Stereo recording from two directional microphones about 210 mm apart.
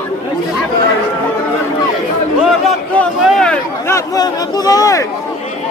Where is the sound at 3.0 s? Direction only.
5° left (ahead or behind).